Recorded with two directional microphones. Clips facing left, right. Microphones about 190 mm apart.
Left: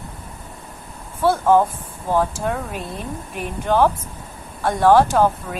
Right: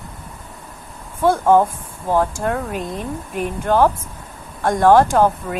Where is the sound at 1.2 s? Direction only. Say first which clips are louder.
Right 2 dB; 15° right (ahead or behind).